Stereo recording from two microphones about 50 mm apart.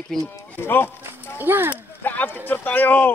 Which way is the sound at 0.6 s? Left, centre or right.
Left.